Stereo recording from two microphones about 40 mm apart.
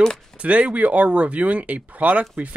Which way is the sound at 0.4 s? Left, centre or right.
Right.